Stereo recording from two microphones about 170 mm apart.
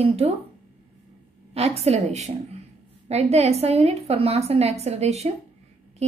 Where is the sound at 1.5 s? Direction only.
35° right (ahead or behind).